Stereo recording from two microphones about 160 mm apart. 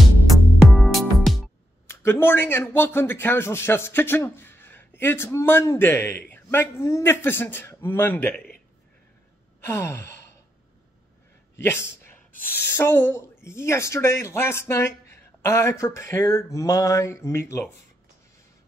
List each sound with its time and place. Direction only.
0.7 s music: centre (ahead or behind)
1.9 s a man's voice: 15° left (ahead or behind)
9.6 s sigh: 15° left (ahead or behind)
11.6 s a man's voice: 15° left (ahead or behind)